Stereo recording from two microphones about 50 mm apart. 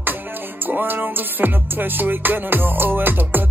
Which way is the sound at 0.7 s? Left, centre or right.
Right.